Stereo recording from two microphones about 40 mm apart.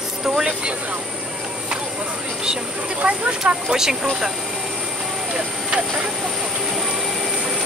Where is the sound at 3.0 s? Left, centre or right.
Right.